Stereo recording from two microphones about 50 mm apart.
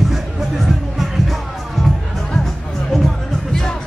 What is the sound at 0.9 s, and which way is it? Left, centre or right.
Music, centre.